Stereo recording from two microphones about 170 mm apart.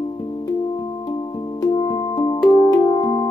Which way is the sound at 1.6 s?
20° left (ahead or behind).